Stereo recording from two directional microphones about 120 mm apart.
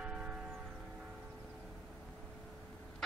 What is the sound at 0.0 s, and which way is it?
Church bell, 10° right (ahead or behind).